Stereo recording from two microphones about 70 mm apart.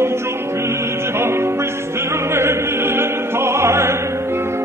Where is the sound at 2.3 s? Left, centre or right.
Right.